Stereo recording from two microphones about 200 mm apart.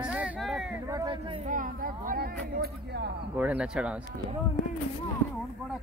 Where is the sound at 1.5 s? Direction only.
45° right (ahead or behind).